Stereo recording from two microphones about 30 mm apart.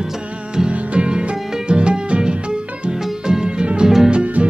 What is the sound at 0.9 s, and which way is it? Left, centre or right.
Music, right.